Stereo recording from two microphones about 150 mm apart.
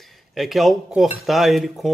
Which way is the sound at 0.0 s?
Centre (ahead or behind).